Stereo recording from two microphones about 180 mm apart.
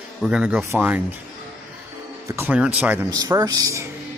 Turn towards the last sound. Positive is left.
turn(degrees=-15)  # may be behind; listen again after turning